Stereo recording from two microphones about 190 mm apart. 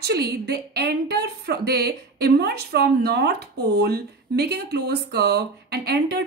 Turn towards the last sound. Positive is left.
turn(degrees=-60)  # may be behind; listen again after turning